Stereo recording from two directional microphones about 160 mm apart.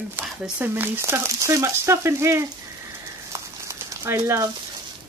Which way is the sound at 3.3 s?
20° right (ahead or behind).